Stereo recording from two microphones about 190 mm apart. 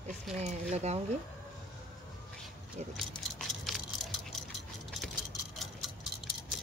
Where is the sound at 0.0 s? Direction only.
35° right (ahead or behind).